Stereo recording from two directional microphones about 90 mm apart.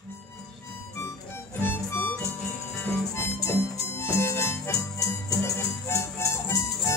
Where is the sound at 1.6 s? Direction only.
25° left (ahead or behind).